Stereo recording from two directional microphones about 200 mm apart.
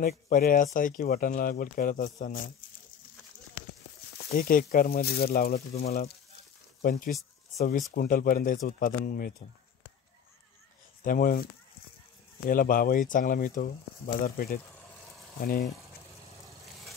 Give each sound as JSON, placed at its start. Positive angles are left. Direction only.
{"t": 0.0, "sound": "speech", "side_deg": 45}
{"t": 4.4, "sound": "speech", "side_deg": 45}
{"t": 11.1, "sound": "speech", "side_deg": 45}